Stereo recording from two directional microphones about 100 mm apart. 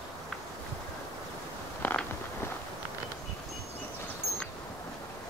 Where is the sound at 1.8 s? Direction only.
25° left (ahead or behind).